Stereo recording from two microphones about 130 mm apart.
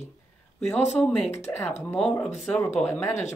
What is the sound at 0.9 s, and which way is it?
Speech, 20° left (ahead or behind).